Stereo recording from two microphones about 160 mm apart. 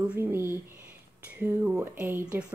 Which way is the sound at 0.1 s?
15° right (ahead or behind).